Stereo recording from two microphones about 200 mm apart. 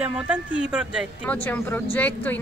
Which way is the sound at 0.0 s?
5° right (ahead or behind).